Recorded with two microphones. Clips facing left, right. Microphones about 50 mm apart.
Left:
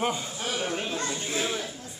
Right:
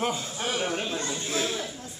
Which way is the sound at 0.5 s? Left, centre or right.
Right.